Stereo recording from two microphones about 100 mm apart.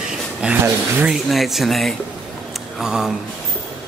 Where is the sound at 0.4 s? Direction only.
10° right (ahead or behind).